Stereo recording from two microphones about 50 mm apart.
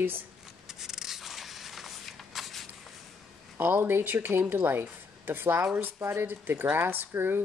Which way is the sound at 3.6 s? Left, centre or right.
Right.